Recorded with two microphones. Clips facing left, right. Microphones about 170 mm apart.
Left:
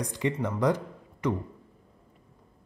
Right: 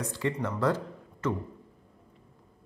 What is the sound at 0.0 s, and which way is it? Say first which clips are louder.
Speech: left 2 dB; 15° left (ahead or behind).